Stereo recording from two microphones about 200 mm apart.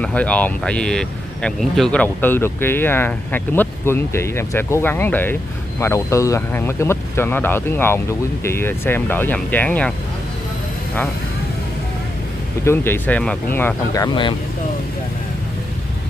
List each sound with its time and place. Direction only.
0.0 s speech: 5° left (ahead or behind)
12.6 s speech: 10° left (ahead or behind)